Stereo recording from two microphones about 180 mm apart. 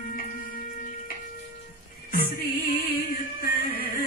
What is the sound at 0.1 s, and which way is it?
Music, 50° left (ahead or behind).